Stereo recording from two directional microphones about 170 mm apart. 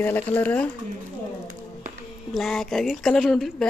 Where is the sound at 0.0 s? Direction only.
10° left (ahead or behind).